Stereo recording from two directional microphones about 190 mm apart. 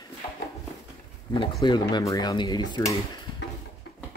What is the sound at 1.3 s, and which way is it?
Speech, 25° left (ahead or behind).